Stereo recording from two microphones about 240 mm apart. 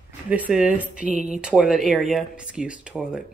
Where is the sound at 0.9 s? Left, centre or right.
Right.